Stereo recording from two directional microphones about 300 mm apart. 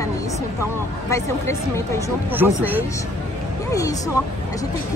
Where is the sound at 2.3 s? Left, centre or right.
Centre.